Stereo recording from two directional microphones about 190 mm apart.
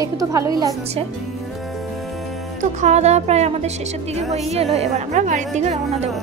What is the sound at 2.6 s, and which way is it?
A woman's voice, 40° right (ahead or behind).